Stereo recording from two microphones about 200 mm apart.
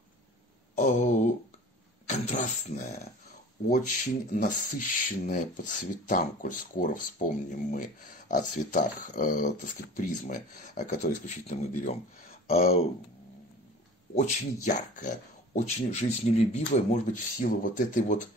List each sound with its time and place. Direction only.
0.7 s a sound: 35° left (ahead or behind)
2.0 s speech: 35° left (ahead or behind)
14.1 s speech: 35° left (ahead or behind)